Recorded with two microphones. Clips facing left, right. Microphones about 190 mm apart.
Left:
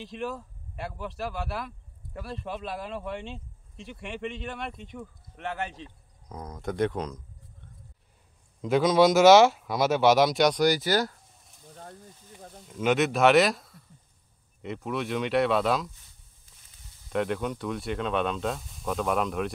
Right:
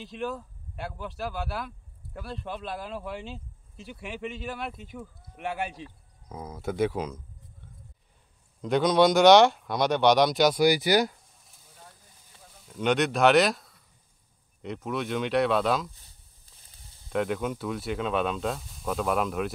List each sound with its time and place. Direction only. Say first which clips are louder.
0.0 s speech: right 1 dB; centre (ahead or behind)
8.5 s speech: left 1 dB; centre (ahead or behind); by 11.1 s 15° right (ahead or behind)
12.4 s a sound: left 9 dB; 50° left (ahead or behind)
12.6 s speech: left 1 dB; centre (ahead or behind)
17.1 s speech: even; centre (ahead or behind)